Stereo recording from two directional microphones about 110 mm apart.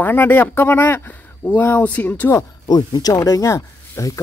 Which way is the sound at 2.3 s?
40° left (ahead or behind).